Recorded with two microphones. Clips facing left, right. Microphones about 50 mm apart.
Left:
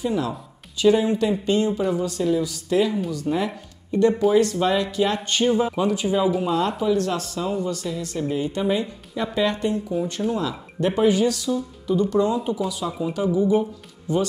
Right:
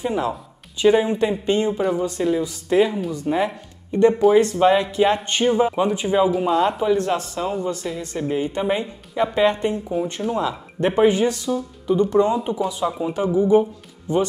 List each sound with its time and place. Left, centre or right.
0.0 s speech: right
1.8 s speech: centre
2.0 s speech: right
4.1 s speech: centre
4.4 s speech: right